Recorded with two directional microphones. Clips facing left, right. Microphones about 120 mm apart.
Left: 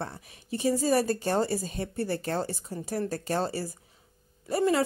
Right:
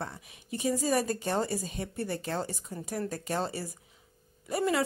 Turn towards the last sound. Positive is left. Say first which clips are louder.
# left 4 dB
turn(degrees=30)  # may be behind; listen again after turning